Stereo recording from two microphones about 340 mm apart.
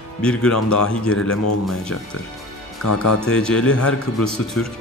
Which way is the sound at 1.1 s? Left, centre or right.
Left.